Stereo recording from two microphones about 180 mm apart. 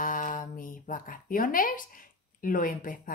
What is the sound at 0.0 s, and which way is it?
Speech, 50° left (ahead or behind).